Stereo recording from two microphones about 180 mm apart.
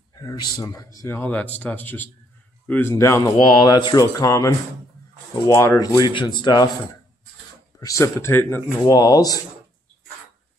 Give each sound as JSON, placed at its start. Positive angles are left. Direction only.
{"t": 0.2, "sound": "speech", "side_deg": 20}
{"t": 5.5, "sound": "speech", "side_deg": 15}
{"t": 7.8, "sound": "speech", "side_deg": 15}